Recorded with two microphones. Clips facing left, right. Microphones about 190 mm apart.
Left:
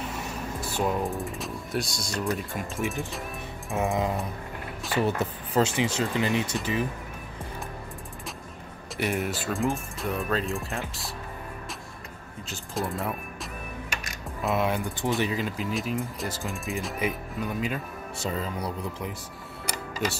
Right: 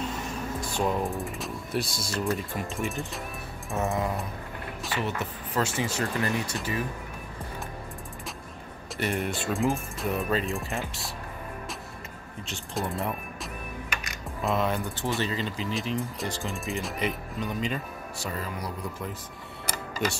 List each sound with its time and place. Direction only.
0.6 s speech: 5° left (ahead or behind)
3.7 s speech: 15° left (ahead or behind)
4.9 s speech: 35° left (ahead or behind)
5.6 s speech: 20° left (ahead or behind)
8.9 s speech: 5° left (ahead or behind)
12.4 s speech: centre (ahead or behind)
14.4 s speech: 10° left (ahead or behind)
18.2 s speech: 25° left (ahead or behind)